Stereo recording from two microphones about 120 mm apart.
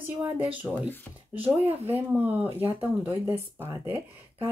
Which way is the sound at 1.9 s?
15° right (ahead or behind).